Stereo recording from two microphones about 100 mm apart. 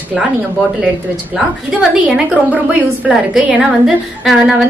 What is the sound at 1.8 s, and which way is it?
A woman's voice, 15° right (ahead or behind).